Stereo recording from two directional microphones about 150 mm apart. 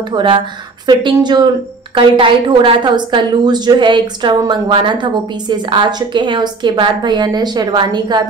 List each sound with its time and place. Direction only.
0.1 s a woman's voice: 35° right (ahead or behind)